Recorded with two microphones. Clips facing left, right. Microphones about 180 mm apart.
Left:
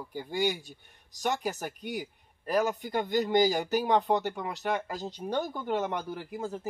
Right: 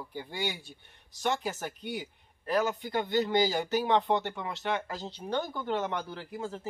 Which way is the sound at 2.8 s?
10° left (ahead or behind).